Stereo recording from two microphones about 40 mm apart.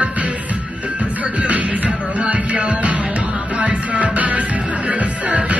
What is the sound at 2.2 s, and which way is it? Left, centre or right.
Music, right.